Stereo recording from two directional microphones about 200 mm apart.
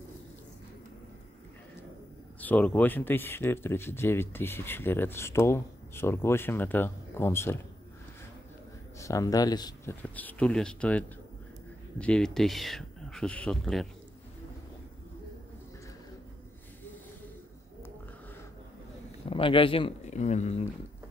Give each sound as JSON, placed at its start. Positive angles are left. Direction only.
{"t": 2.4, "sound": "speech", "side_deg": 5}
{"t": 9.0, "sound": "speech", "side_deg": 15}
{"t": 10.0, "sound": "speech", "side_deg": 10}
{"t": 19.2, "sound": "speech", "side_deg": 25}